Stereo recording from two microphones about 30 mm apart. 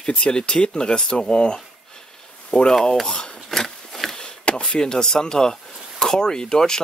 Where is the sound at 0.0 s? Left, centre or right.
Left.